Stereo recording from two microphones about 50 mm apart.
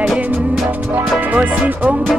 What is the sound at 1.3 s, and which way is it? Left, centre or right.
Speech, right.